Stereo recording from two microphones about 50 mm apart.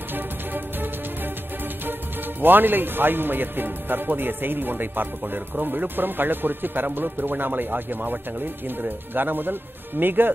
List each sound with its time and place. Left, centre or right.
0.1 s music: right
2.4 s a man's voice: right